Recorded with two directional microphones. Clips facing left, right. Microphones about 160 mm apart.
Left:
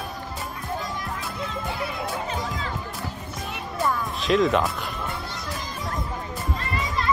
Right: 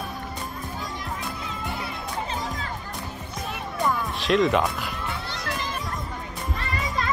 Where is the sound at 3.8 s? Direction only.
Centre (ahead or behind).